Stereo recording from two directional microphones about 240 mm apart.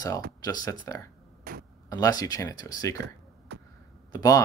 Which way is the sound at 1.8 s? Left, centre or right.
Centre.